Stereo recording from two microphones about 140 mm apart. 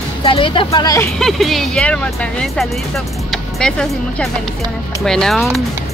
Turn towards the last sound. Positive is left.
turn(degrees=0)  # may be behind; listen again after turning